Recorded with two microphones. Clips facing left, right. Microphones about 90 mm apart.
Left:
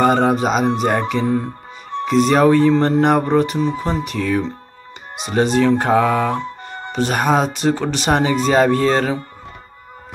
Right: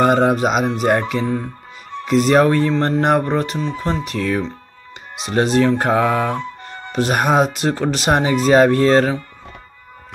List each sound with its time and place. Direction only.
0.0 s speech: centre (ahead or behind)